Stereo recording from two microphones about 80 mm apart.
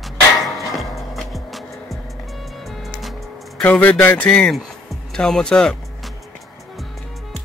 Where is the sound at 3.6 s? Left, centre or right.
Left.